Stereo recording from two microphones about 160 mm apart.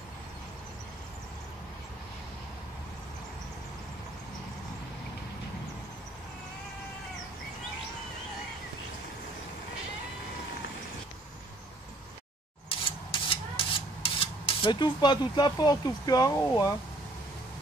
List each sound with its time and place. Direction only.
12.6 s rub: 35° left (ahead or behind)